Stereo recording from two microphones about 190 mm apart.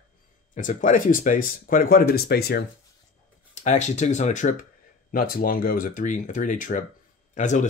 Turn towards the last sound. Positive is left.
turn(degrees=40)  # may be behind; listen again after turning